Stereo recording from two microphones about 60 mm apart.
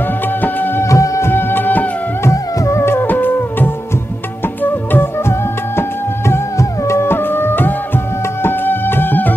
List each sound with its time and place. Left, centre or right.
0.4 s music: left
0.8 s music: left
1.2 s music: left
2.3 s music: left
4.9 s music: left
6.6 s music: left
7.0 s music: left